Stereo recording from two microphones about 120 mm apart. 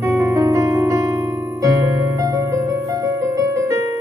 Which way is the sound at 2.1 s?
30° right (ahead or behind).